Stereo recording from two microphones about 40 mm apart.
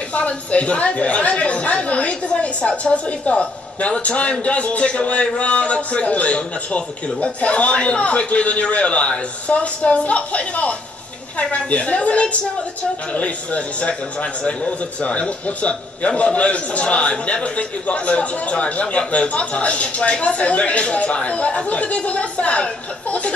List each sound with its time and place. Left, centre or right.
0.1 s a man's voice: left